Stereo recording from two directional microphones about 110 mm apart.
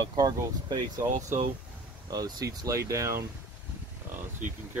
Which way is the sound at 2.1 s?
35° right (ahead or behind).